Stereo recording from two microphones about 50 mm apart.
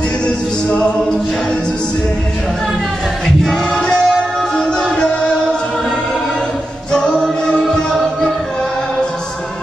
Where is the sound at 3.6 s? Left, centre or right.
Centre.